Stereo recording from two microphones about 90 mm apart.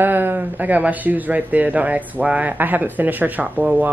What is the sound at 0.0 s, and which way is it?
Speech, 20° right (ahead or behind).